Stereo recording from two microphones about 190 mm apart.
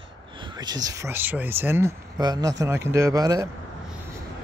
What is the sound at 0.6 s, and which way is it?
Speech, 20° right (ahead or behind).